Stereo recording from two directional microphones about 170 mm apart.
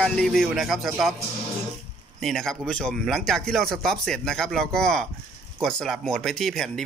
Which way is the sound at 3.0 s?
Centre (ahead or behind).